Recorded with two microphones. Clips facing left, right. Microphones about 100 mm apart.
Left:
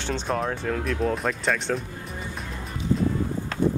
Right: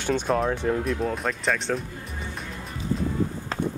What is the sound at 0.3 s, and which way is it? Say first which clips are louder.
Speech: right 2 dB; centre (ahead or behind).